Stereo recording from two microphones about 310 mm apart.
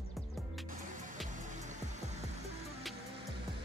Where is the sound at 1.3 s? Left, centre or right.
Right.